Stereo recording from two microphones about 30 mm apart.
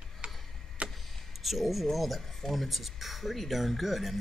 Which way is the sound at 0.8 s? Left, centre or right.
Right.